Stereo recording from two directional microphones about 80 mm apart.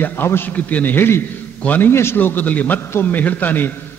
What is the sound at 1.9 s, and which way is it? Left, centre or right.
A man's voice, left.